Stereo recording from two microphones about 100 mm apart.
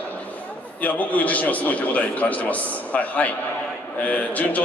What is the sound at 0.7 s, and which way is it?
A man's voice, 15° left (ahead or behind).